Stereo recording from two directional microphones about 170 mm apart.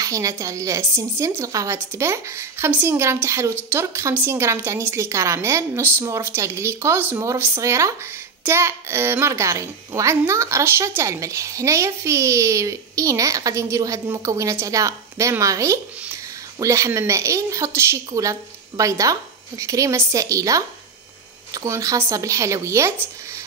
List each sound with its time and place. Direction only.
0.0 s a woman's voice: 20° right (ahead or behind)
21.6 s a woman's voice: 15° right (ahead or behind)